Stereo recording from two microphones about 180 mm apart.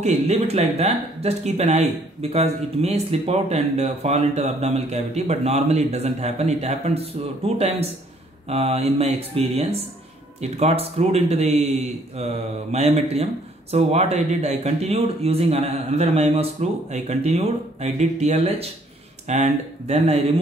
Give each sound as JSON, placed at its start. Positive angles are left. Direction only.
{"t": 0.0, "sound": "a man's voice", "side_deg": -35}